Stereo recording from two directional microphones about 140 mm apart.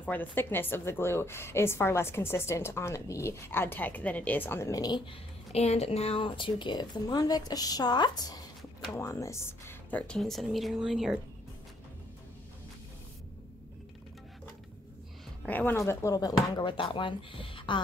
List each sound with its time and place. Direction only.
0.0 s a woman's voice: 10° left (ahead or behind); by 5.0 s 25° left (ahead or behind)
5.5 s speech: 50° left (ahead or behind); by 11.1 s centre (ahead or behind)
15.4 s speech: 15° left (ahead or behind); by 17.8 s 35° left (ahead or behind)